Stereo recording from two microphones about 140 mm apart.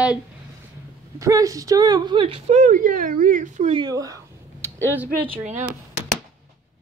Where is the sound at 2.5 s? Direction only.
65° right (ahead or behind).